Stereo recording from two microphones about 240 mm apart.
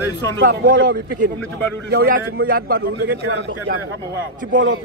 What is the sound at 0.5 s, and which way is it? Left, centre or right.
A man's voice, right.